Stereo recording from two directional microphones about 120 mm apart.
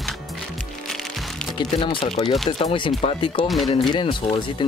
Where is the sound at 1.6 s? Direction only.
45° left (ahead or behind).